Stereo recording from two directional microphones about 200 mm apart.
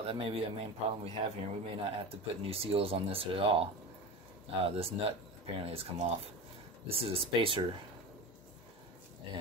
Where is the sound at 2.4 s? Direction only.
30° right (ahead or behind).